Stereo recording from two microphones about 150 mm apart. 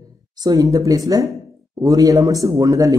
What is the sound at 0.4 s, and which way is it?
Speech, 25° right (ahead or behind).